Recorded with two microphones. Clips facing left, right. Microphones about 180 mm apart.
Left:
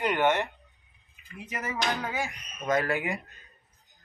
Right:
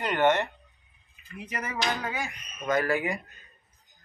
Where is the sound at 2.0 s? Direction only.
25° left (ahead or behind).